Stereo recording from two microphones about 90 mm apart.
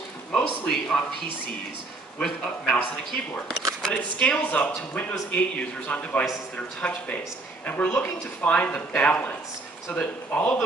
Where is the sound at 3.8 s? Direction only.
10° left (ahead or behind).